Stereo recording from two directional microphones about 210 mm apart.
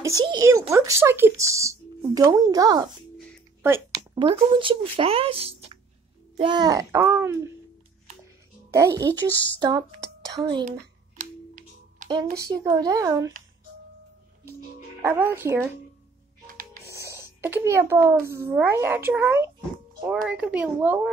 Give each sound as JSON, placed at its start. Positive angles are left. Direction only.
{"t": 0.0, "sound": "speech", "side_deg": -20}
{"t": 8.7, "sound": "speech", "side_deg": -15}
{"t": 11.1, "sound": "music", "side_deg": -40}
{"t": 12.4, "sound": "speech", "side_deg": -20}
{"t": 15.0, "sound": "speech", "side_deg": -10}
{"t": 16.9, "sound": "a child's voice", "side_deg": -15}